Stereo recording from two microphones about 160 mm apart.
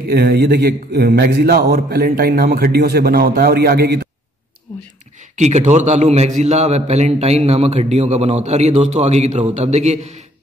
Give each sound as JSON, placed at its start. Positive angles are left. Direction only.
{"t": 0.1, "sound": "a man's voice", "side_deg": -75}
{"t": 5.3, "sound": "a man's voice", "side_deg": -45}